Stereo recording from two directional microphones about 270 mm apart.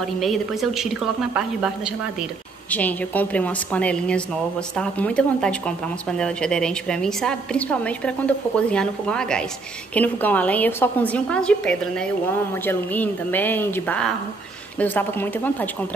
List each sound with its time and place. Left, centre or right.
0.0 s a woman's voice: centre
2.7 s a woman's voice: centre